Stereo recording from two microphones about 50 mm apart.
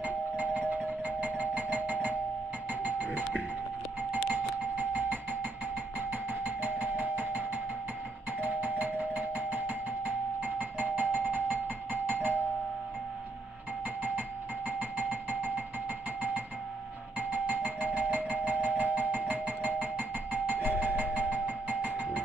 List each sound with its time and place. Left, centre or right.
0.0 s doorbell: right
14.8 s a sound: right
17.2 s doorbell: right